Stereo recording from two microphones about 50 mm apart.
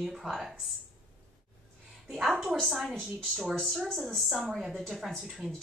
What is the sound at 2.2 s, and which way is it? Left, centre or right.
A woman's voice, centre.